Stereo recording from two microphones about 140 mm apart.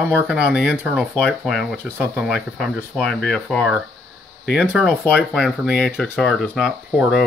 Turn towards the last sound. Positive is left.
turn(degrees=0)  # may be behind; listen again after turning